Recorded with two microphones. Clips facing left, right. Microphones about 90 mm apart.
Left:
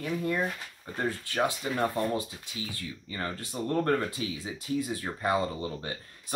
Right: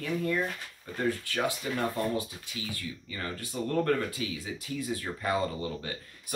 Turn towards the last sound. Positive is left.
turn(degrees=25)  # may be behind; listen again after turning